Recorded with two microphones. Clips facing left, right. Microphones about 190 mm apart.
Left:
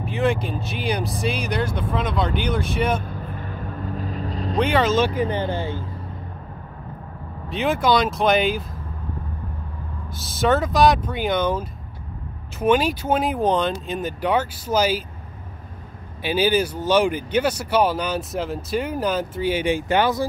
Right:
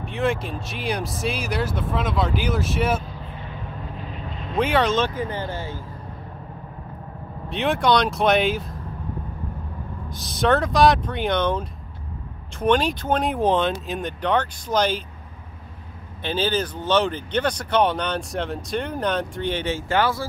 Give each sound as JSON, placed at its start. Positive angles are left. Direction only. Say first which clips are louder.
{"t": 0.0, "sound": "speech", "louder": "left 2 dB", "side_deg": 0}
{"t": 3.1, "sound": "vehicle", "louder": "left 4 dB", "side_deg": 50}
{"t": 4.6, "sound": "speech", "louder": "left 1 dB", "side_deg": 0}
{"t": 7.4, "sound": "speech", "louder": "even", "side_deg": 0}
{"t": 10.0, "sound": "speech", "louder": "even", "side_deg": 5}
{"t": 16.2, "sound": "speech", "louder": "left 4 dB", "side_deg": 10}